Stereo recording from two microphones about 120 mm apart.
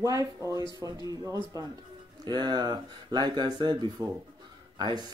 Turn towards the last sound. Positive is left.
turn(degrees=-40)  # may be behind; listen again after turning